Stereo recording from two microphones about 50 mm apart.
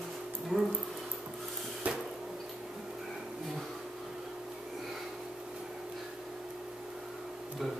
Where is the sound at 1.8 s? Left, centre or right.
Right.